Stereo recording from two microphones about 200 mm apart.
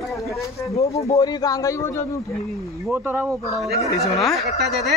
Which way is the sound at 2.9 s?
10° right (ahead or behind).